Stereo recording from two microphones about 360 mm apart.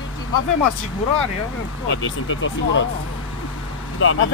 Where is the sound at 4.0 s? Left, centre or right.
Left.